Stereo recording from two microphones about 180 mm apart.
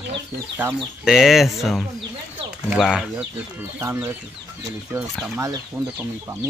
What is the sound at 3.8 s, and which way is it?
Speech, 15° right (ahead or behind).